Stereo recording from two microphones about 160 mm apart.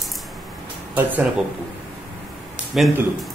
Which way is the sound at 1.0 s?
10° right (ahead or behind).